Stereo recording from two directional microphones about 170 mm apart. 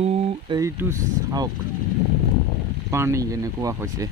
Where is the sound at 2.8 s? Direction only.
15° right (ahead or behind).